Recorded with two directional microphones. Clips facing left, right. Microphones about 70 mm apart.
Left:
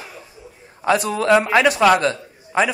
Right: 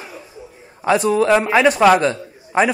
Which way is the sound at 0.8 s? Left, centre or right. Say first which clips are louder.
Right 1 dB; centre.